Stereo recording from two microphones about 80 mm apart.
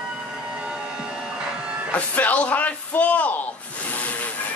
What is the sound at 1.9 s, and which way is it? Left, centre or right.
Speech, centre.